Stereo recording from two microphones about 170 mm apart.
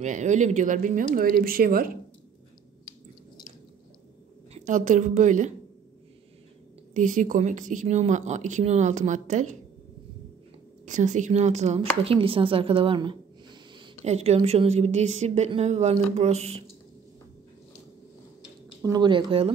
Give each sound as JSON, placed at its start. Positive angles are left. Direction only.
{"t": 0.0, "sound": "speech", "side_deg": -45}
{"t": 4.6, "sound": "speech", "side_deg": -50}
{"t": 6.9, "sound": "speech", "side_deg": -45}
{"t": 10.9, "sound": "a woman's voice", "side_deg": -45}
{"t": 18.8, "sound": "speech", "side_deg": -25}